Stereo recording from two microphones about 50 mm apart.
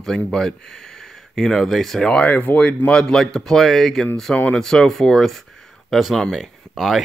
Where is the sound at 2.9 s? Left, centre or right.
Centre.